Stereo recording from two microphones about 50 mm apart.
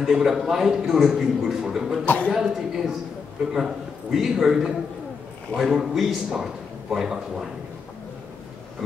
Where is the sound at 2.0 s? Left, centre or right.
Left.